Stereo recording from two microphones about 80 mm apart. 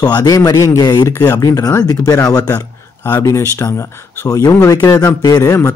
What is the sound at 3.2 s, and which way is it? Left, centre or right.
Speech, left.